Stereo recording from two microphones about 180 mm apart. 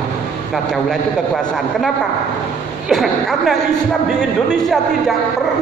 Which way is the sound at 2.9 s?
Centre (ahead or behind).